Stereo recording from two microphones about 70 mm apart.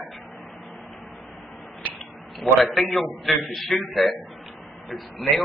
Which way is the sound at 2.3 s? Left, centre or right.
Centre.